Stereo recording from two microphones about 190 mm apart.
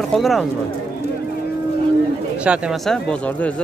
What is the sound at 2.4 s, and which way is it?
Speech, 5° right (ahead or behind).